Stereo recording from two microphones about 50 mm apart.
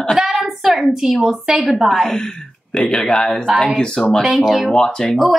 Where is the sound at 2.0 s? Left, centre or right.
Centre.